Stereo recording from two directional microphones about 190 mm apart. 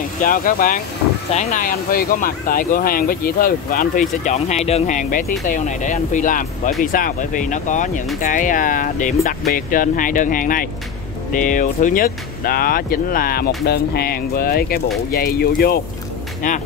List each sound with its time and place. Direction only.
0.2 s speech: 45° left (ahead or behind)